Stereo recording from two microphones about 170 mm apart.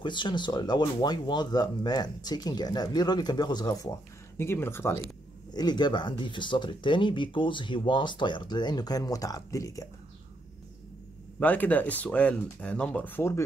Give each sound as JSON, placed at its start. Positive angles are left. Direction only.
{"t": 0.0, "sound": "speech", "side_deg": 25}
{"t": 11.3, "sound": "speech", "side_deg": 10}